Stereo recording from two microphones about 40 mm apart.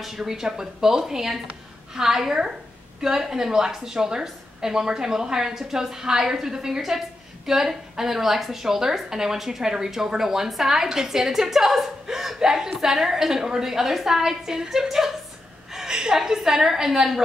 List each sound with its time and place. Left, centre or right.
0.0 s a woman's voice: centre
12.4 s a woman's voice: centre
15.7 s a sound: centre
16.0 s a woman's voice: centre